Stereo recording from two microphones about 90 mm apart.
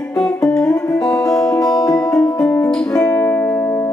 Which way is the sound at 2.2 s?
15° left (ahead or behind).